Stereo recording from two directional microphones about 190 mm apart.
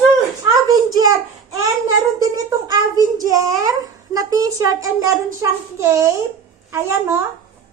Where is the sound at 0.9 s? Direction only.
20° right (ahead or behind).